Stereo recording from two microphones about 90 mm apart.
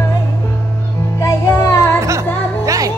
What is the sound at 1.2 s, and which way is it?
Music, 35° left (ahead or behind).